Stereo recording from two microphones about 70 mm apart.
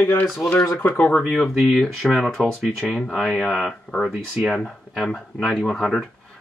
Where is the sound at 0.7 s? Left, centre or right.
Left.